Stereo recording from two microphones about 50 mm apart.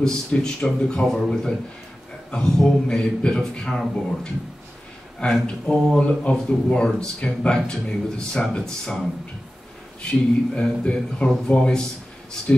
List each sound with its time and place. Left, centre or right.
0.0 s a man's voice: centre
10.0 s a man's voice: centre